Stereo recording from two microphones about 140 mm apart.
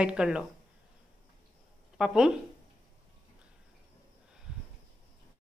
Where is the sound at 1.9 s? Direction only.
5° right (ahead or behind).